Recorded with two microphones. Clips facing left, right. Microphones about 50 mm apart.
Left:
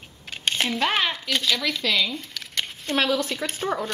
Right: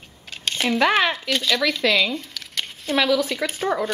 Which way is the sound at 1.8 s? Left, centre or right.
Right.